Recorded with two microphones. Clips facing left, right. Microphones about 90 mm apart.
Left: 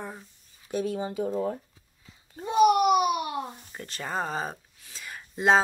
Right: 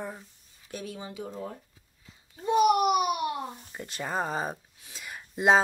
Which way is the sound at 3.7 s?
5° right (ahead or behind).